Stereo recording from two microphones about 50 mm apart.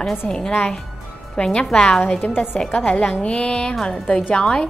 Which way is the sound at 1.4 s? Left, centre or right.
Left.